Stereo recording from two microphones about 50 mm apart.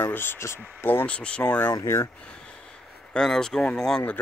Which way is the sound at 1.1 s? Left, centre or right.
Left.